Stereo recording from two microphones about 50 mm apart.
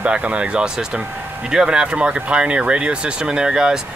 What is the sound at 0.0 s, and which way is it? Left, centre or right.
Speech, right.